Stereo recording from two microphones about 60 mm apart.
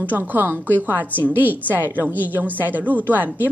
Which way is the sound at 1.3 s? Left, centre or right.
Right.